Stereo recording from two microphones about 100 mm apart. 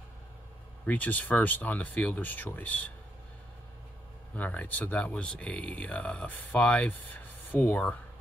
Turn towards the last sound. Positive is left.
turn(degrees=15)  # may be behind; listen again after turning